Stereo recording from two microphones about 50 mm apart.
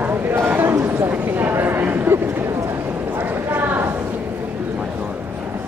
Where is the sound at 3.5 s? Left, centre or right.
Right.